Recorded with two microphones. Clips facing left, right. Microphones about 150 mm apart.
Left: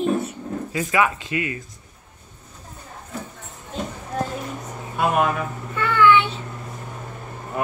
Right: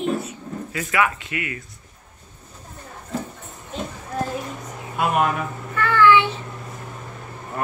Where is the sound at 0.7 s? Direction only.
20° left (ahead or behind).